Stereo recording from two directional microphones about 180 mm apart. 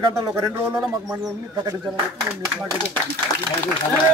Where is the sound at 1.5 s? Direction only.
20° right (ahead or behind).